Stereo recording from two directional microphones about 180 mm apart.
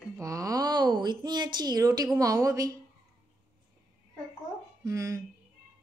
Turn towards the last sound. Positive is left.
turn(degrees=-15)  # may be behind; listen again after turning